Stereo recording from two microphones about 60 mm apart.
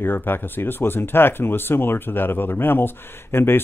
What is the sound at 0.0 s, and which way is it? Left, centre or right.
Speech, left.